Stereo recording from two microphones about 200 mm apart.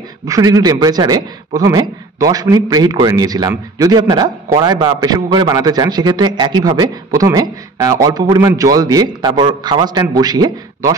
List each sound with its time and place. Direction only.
0.3 s a man's voice: 20° right (ahead or behind)